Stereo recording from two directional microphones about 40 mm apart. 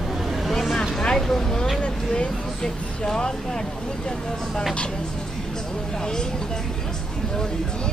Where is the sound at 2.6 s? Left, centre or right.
Centre.